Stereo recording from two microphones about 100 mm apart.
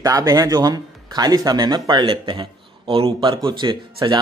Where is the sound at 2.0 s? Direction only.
60° right (ahead or behind).